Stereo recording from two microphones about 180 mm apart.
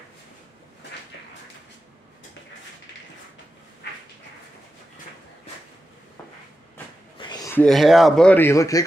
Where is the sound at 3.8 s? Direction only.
65° left (ahead or behind).